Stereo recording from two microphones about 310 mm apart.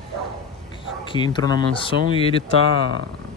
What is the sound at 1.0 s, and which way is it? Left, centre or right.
Speech, centre.